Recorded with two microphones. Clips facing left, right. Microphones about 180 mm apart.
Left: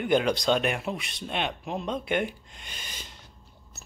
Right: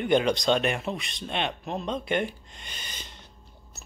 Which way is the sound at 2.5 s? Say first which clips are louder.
Right 1 dB; 5° left (ahead or behind).